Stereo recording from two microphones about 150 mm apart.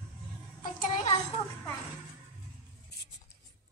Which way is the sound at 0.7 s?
65° left (ahead or behind).